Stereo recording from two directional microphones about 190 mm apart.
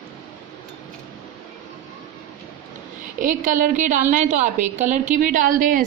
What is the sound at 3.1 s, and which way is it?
A woman's voice, 45° right (ahead or behind).